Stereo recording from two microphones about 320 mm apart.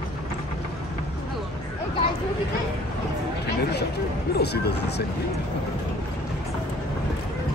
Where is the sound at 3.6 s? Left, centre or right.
Left.